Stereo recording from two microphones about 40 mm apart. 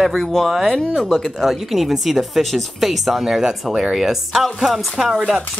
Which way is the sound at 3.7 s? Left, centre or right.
Right.